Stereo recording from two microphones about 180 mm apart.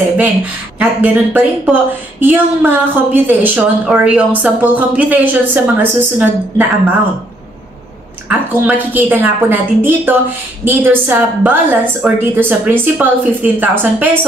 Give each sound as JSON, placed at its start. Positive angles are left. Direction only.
{"t": 0.7, "sound": "speech", "side_deg": -10}
{"t": 8.3, "sound": "speech", "side_deg": -10}